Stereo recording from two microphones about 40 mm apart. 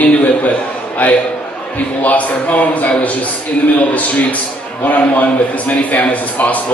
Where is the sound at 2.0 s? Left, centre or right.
Left.